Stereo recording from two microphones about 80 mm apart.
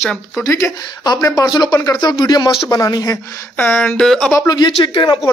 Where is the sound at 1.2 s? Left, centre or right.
Left.